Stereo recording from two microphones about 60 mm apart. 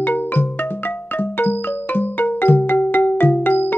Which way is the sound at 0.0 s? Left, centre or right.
Left.